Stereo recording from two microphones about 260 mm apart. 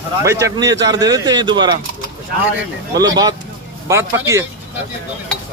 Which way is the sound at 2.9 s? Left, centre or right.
Centre.